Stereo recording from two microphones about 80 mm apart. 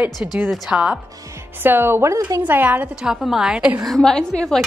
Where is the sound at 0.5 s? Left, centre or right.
Centre.